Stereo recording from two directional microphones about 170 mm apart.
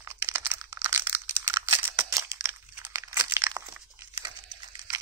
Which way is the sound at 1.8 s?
15° right (ahead or behind).